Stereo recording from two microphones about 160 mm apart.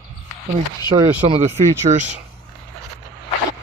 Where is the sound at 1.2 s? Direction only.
35° right (ahead or behind).